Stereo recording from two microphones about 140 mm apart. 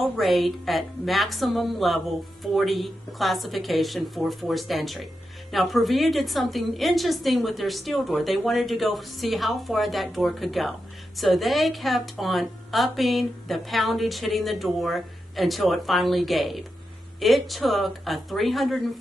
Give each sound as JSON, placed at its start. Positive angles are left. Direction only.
{"t": 0.0, "sound": "a woman's voice", "side_deg": 0}